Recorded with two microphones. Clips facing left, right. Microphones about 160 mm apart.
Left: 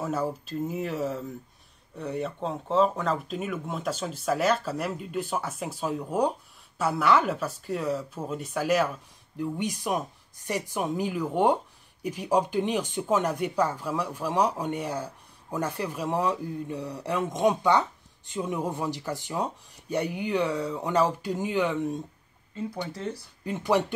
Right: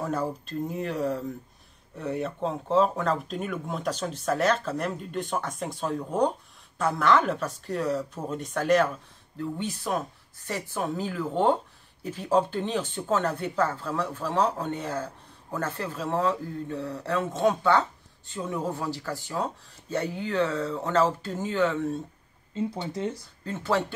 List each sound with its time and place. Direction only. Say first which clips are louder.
0.0 s speech: even; 5° left (ahead or behind)
22.5 s speech: right 3 dB; 25° right (ahead or behind)
23.4 s speech: left 2 dB; 15° left (ahead or behind)